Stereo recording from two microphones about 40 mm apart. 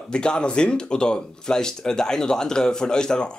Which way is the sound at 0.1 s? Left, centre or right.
Left.